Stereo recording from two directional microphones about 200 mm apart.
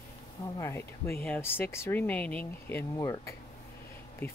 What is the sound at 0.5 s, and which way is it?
Speech, 15° left (ahead or behind).